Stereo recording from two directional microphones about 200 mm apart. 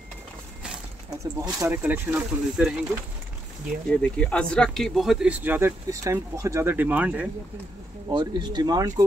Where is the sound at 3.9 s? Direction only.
5° left (ahead or behind).